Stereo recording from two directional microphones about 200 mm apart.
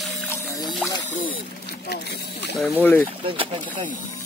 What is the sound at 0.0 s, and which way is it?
Music, 5° left (ahead or behind).